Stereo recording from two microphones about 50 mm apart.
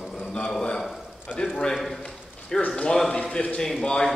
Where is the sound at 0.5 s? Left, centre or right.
Centre.